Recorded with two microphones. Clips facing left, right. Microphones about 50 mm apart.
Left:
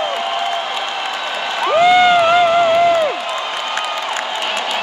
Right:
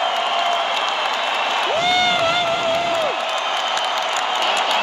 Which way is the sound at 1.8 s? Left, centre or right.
Left.